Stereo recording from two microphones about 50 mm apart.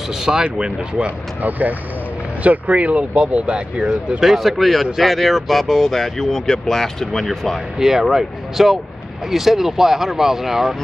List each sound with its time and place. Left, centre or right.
0.1 s speech: centre
1.4 s speech: right; by 4.0 s centre
4.2 s speech: centre
7.8 s speech: centre